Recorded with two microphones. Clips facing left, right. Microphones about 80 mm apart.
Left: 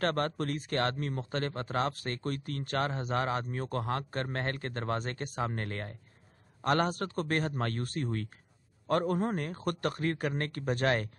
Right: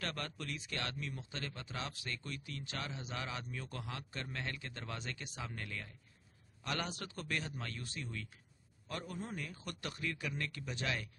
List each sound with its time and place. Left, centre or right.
0.0 s a man's voice: left